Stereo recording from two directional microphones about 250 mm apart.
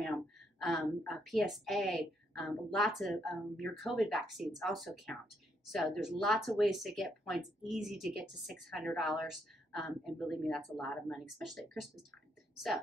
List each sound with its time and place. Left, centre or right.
0.0 s speech: centre